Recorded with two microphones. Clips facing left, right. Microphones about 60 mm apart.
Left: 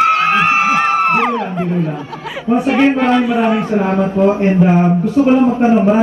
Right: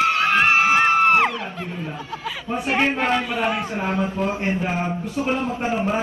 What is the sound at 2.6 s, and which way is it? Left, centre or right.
Speech, left.